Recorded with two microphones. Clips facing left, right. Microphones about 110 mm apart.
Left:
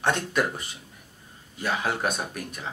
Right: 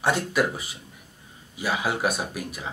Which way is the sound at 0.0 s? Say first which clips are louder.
Right 2 dB; 5° right (ahead or behind).